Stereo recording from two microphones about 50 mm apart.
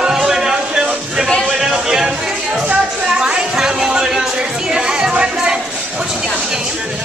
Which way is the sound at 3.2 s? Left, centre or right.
Centre.